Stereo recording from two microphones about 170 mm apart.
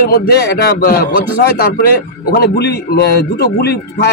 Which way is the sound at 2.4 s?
70° left (ahead or behind).